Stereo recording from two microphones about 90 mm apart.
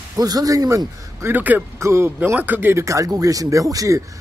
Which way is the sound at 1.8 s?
30° right (ahead or behind).